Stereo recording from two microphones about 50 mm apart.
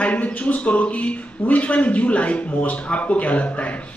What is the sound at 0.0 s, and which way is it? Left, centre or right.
Speech, left.